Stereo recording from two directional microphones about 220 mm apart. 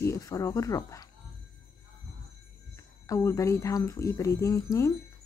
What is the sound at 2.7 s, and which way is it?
Speech, 15° left (ahead or behind).